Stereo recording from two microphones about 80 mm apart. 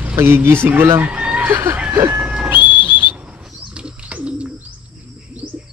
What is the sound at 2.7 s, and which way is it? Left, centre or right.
Whistle, left.